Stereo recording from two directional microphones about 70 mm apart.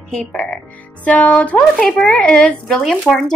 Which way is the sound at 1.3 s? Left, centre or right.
Centre.